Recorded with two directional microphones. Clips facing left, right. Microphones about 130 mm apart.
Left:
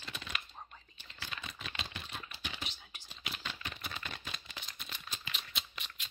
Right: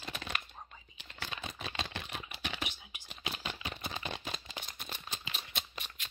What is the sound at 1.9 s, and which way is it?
Typing, 85° right.